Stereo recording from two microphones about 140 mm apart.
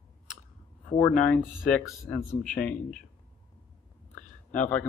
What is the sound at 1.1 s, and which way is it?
Speech, 10° left (ahead or behind).